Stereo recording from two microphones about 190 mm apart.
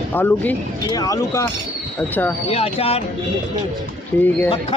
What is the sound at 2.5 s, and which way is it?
Speech, 30° left (ahead or behind).